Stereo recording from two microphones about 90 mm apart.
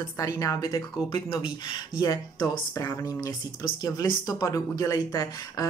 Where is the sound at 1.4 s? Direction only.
55° left (ahead or behind).